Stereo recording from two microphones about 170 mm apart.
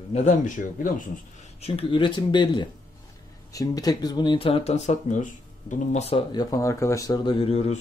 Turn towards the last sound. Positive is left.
turn(degrees=35)  # may be behind; listen again after turning